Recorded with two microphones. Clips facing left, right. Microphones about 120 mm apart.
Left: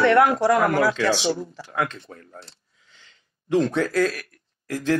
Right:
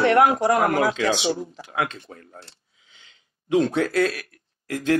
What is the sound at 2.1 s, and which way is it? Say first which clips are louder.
Speech: even; 30° right (ahead or behind).